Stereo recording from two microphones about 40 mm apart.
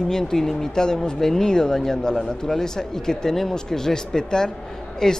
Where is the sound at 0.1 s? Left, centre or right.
Centre.